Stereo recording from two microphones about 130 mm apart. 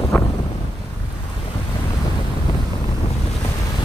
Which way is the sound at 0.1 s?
30° left (ahead or behind).